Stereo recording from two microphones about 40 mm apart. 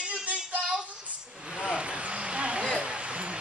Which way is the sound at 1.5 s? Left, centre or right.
Right.